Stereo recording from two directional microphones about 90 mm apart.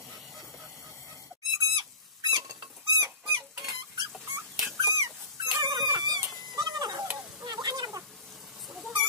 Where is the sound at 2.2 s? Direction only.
45° right (ahead or behind).